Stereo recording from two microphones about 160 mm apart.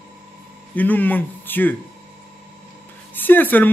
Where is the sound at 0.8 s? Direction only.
10° left (ahead or behind).